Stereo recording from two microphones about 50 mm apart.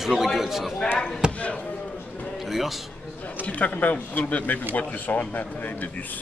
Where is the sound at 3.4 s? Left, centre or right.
Left.